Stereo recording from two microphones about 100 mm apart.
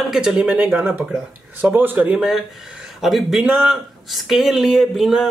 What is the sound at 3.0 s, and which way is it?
Speech, centre (ahead or behind).